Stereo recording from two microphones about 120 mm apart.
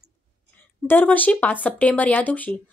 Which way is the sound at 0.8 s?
15° left (ahead or behind).